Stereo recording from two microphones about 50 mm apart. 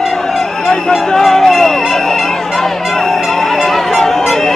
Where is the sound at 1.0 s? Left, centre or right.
Centre.